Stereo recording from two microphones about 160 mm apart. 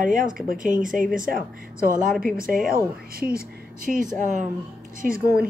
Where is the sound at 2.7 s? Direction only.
70° right (ahead or behind).